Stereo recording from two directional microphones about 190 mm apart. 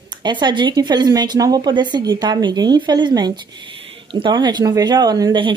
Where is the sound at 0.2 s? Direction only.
25° right (ahead or behind).